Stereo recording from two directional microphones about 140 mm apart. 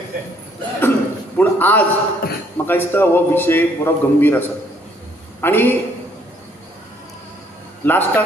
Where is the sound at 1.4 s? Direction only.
10° left (ahead or behind).